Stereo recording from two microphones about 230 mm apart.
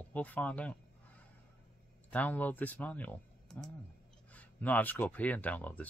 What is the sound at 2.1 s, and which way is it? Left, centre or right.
Speech, centre.